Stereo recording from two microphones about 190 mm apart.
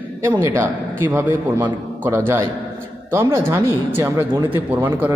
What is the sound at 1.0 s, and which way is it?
Speech, 10° right (ahead or behind).